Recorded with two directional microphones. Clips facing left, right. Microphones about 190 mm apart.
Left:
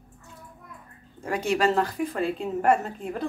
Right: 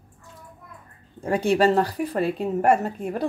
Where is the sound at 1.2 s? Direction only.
35° right (ahead or behind).